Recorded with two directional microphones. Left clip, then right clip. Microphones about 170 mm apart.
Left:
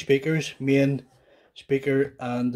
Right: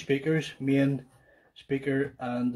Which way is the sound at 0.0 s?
45° left (ahead or behind).